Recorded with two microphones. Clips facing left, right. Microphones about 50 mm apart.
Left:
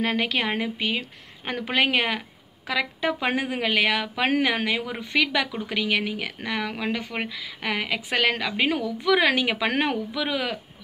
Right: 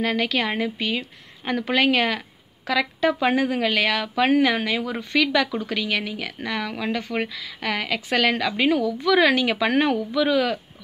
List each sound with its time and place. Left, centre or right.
0.0 s a woman's voice: left